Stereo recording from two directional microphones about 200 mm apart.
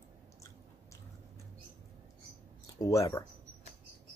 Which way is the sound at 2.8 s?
15° left (ahead or behind).